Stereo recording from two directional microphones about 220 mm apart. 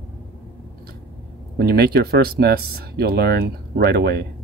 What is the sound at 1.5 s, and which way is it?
Speech, 45° right (ahead or behind).